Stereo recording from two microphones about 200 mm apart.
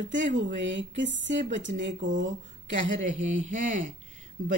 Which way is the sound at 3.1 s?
40° right (ahead or behind).